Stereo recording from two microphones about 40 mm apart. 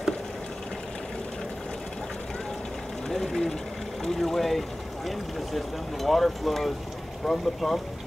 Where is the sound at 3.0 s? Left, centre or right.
Centre.